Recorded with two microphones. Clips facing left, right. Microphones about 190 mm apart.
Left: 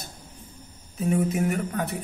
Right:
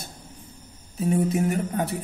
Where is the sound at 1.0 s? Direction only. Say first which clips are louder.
Right 1 dB; 35° right (ahead or behind).